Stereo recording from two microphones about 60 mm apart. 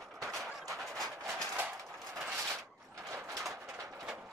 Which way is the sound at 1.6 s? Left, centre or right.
Right.